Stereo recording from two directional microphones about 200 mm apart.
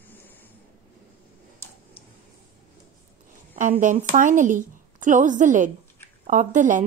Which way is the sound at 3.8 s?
40° right (ahead or behind).